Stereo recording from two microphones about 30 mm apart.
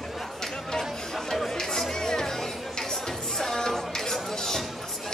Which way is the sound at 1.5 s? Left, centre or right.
Centre.